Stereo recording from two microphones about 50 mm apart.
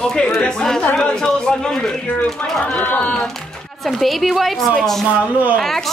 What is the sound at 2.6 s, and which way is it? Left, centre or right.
Speech, left.